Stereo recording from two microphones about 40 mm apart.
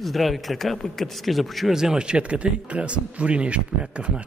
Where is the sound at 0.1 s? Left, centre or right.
Centre.